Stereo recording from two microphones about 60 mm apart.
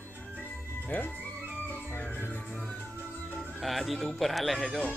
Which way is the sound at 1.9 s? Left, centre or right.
Left.